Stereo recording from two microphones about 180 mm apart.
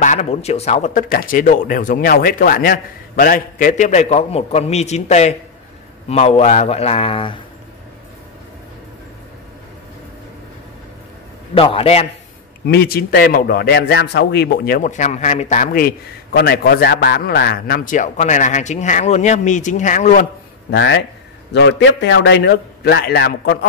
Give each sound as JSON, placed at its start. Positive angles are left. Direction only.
{"t": 0.0, "sound": "a man's voice", "side_deg": 40}
{"t": 11.5, "sound": "a man's voice", "side_deg": 30}
{"t": 12.6, "sound": "a man's voice", "side_deg": 60}
{"t": 14.8, "sound": "a man's voice", "side_deg": 45}
{"t": 20.7, "sound": "a man's voice", "side_deg": 70}